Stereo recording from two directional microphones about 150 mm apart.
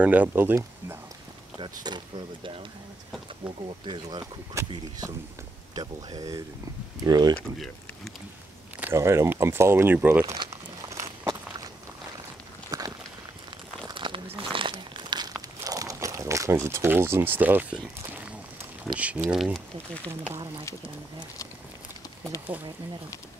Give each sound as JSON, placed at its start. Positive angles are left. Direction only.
{"t": 0.0, "sound": "speech", "side_deg": -10}
{"t": 1.6, "sound": "speech", "side_deg": -30}
{"t": 4.6, "sound": "speech", "side_deg": -20}
{"t": 5.8, "sound": "speech", "side_deg": -25}
{"t": 7.5, "sound": "speech", "side_deg": 0}
{"t": 8.8, "sound": "speech", "side_deg": -15}
{"t": 10.3, "sound": "crunch", "side_deg": -25}
{"t": 12.7, "sound": "walk", "side_deg": -25}
{"t": 13.8, "sound": "crumpling", "side_deg": -35}
{"t": 18.9, "sound": "speech", "side_deg": -10}
{"t": 22.5, "sound": "speech", "side_deg": -10}